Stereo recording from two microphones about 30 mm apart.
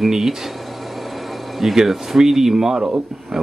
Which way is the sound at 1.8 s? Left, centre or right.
Centre.